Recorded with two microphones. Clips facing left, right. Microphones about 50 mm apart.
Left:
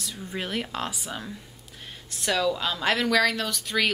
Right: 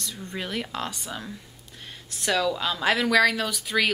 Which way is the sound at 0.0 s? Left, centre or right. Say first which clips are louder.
Even; centre.